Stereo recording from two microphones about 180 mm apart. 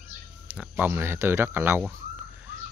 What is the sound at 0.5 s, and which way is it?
Speech, 5° right (ahead or behind).